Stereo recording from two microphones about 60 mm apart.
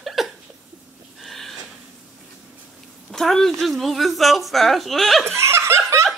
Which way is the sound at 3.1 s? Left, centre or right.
Centre.